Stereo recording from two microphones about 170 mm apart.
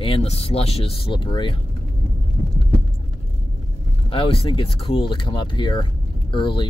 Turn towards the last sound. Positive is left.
turn(degrees=30)  # may be behind; listen again after turning